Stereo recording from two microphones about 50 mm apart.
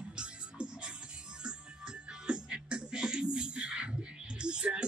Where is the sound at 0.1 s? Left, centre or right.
Centre.